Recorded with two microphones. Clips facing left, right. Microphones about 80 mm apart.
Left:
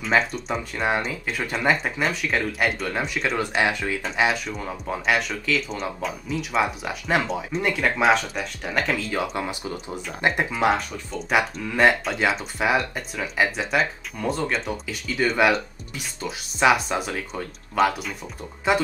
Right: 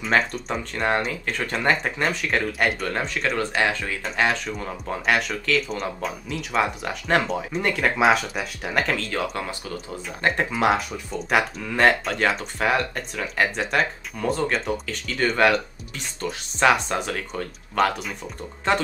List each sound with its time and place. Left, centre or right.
0.0 s speech: centre
3.3 s speech: centre
10.5 s speech: centre